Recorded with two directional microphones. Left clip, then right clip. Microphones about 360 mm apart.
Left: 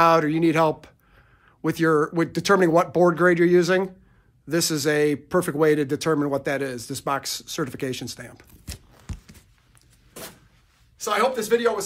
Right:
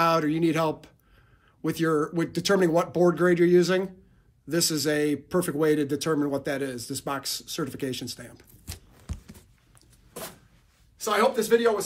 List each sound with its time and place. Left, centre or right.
0.0 s a man's voice: centre
8.6 s a sound: centre
11.0 s speech: centre